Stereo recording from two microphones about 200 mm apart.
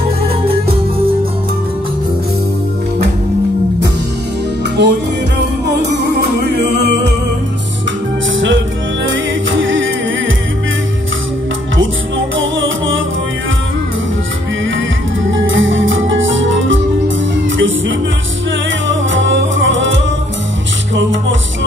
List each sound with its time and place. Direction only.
4.8 s music: 60° right (ahead or behind)
9.0 s music: 75° right (ahead or behind)
12.4 s music: 75° right (ahead or behind)
15.3 s music: 70° right (ahead or behind)
19.1 s music: 70° right (ahead or behind)